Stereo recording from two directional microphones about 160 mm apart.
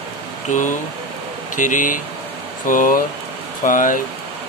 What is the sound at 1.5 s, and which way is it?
Speech, 55° left (ahead or behind).